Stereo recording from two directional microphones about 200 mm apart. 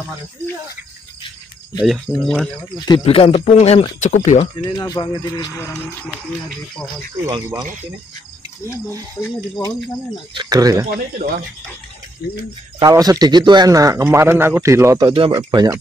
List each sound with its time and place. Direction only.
1.8 s speech: centre (ahead or behind)
2.7 s speech: 20° left (ahead or behind)
4.6 s speech: 20° left (ahead or behind)
7.2 s a man's voice: 20° right (ahead or behind)
9.1 s speech: 15° left (ahead or behind)
10.3 s speech: 20° right (ahead or behind)
10.9 s speech: 45° right (ahead or behind)
12.7 s a man's voice: 20° right (ahead or behind)